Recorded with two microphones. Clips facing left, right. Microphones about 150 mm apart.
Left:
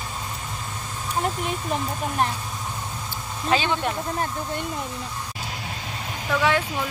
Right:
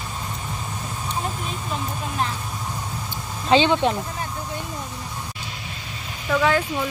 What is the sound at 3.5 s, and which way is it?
Speech, 25° right (ahead or behind).